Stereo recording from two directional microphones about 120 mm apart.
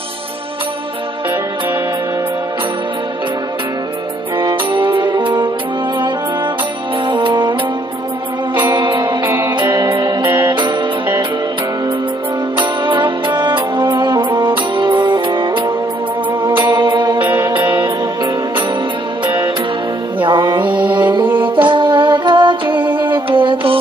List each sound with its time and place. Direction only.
4.4 s music: 45° right (ahead or behind)
7.1 s brass instrument: 45° right (ahead or behind)
8.5 s music: 40° right (ahead or behind)
9.7 s music: 25° right (ahead or behind)
10.4 s music: 40° right (ahead or behind)
12.5 s music: 45° right (ahead or behind)
20.2 s music: 40° right (ahead or behind)